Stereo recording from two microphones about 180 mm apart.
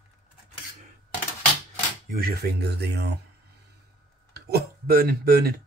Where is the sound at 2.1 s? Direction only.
60° right (ahead or behind).